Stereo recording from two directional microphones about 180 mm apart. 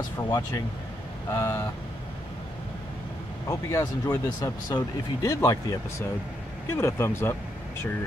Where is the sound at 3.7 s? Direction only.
20° left (ahead or behind).